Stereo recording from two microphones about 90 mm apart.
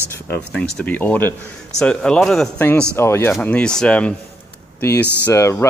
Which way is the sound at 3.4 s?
10° left (ahead or behind).